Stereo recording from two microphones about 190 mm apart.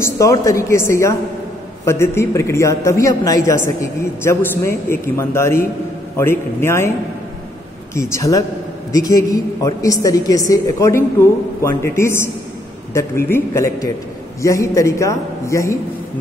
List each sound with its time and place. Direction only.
0.0 s a woman's voice: 15° left (ahead or behind)
7.9 s a woman's voice: 15° left (ahead or behind)